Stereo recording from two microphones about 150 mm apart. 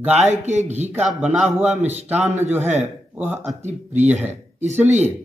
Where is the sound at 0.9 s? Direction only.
10° right (ahead or behind).